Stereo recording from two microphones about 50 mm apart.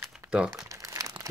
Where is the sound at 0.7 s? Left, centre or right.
Right.